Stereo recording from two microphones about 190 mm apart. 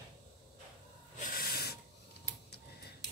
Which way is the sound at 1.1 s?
45° left (ahead or behind).